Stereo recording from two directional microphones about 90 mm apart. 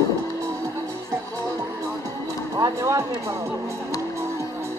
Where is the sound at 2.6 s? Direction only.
35° right (ahead or behind).